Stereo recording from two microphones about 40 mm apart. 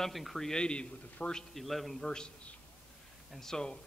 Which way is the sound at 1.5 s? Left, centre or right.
Centre.